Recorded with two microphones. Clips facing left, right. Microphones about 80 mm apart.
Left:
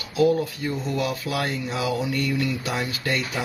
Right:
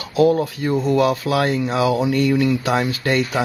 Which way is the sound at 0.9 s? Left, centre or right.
Right.